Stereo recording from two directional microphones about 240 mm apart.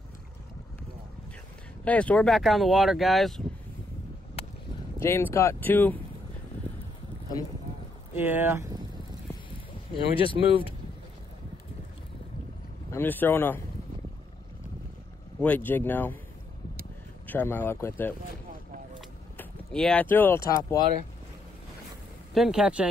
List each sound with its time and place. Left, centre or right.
1.9 s speech: centre
4.9 s speech: centre
8.2 s speech: centre
10.1 s speech: left
12.9 s speech: centre
15.4 s speech: centre
17.3 s speech: centre
18.9 s a sound: centre
22.3 s speech: centre